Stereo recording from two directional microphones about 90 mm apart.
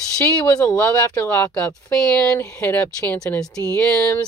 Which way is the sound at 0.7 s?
15° left (ahead or behind).